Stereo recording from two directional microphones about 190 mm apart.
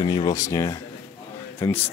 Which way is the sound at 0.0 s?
25° left (ahead or behind).